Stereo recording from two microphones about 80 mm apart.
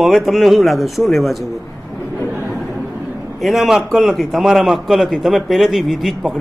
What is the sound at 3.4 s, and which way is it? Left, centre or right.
A man's voice, centre.